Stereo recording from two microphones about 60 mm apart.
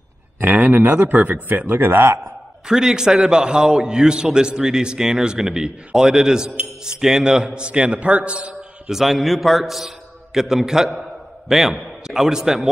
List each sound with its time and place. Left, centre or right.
0.4 s a man's voice: right
2.6 s a man's voice: centre
8.9 s a man's voice: centre